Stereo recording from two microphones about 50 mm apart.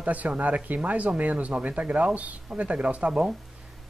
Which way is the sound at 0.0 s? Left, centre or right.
Right.